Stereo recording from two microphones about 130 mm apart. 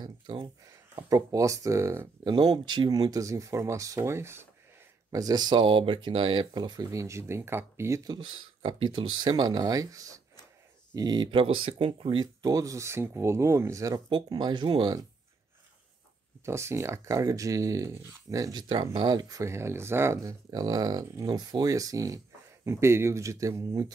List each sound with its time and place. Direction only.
0.0 s a sound: 35° right (ahead or behind)
0.9 s speech: 25° right (ahead or behind)
2.2 s speech: 30° right (ahead or behind)
11.4 s speech: 45° right (ahead or behind)
16.4 s speech: 20° right (ahead or behind)